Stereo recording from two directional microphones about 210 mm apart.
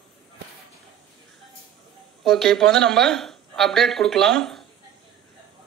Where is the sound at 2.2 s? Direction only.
Centre (ahead or behind).